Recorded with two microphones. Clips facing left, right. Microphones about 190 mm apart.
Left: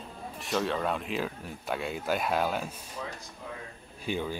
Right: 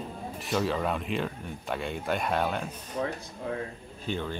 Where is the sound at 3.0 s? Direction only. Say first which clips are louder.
Right 9 dB; 50° right (ahead or behind).